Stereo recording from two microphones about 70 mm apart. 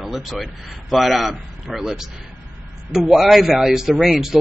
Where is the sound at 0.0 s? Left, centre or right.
Centre.